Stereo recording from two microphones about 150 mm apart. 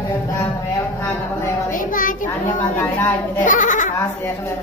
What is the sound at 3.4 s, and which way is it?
Goat, 60° left (ahead or behind).